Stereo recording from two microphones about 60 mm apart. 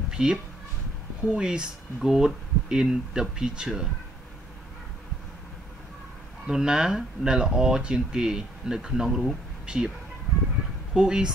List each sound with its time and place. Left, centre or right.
0.1 s a sound: centre
1.2 s speech: centre
6.4 s speech: centre
10.9 s speech: centre